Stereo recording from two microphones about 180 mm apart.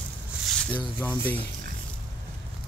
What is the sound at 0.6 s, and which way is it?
Speech, 5° left (ahead or behind).